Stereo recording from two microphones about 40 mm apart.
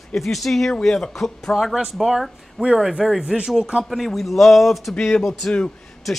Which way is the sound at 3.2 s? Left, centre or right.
Right.